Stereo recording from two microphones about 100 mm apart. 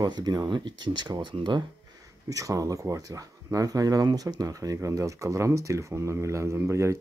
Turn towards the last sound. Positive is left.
turn(degrees=-25)  # may be behind; listen again after turning